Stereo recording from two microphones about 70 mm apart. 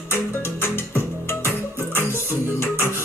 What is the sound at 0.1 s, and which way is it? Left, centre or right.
Music, left.